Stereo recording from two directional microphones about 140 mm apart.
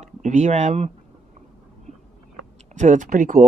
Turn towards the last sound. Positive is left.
turn(degrees=-65)  # may be behind; listen again after turning